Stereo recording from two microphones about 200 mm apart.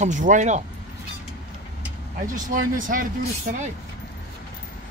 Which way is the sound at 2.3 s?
40° right (ahead or behind).